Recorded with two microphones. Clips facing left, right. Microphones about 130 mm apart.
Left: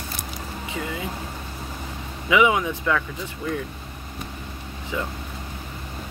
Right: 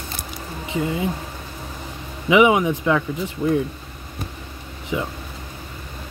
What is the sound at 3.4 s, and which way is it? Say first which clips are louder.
Speech: right 8 dB; 30° right (ahead or behind).